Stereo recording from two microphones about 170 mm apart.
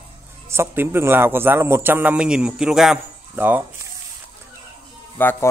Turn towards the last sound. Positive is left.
turn(degrees=10)  # may be behind; listen again after turning